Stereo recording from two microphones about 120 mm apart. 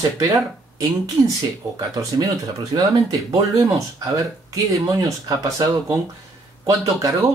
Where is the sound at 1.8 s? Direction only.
30° right (ahead or behind).